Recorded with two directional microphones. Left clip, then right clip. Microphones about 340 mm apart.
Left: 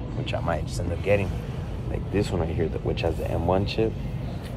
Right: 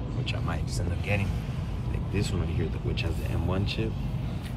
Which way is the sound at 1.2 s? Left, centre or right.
Centre.